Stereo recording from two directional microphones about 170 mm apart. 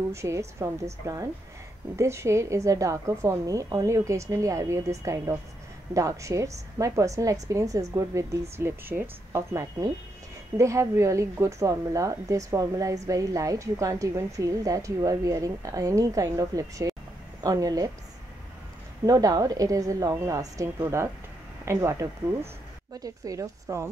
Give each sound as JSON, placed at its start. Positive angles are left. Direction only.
{"t": 0.1, "sound": "a woman's voice", "side_deg": -15}
{"t": 19.0, "sound": "a woman's voice", "side_deg": -20}